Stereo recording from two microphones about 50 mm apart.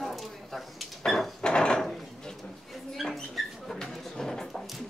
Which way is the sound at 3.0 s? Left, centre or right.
Centre.